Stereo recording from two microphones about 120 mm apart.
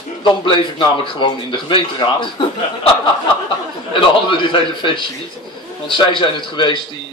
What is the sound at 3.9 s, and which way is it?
A man's voice, 45° left (ahead or behind).